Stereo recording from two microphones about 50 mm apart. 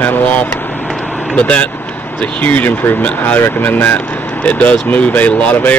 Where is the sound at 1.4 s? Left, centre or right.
Left.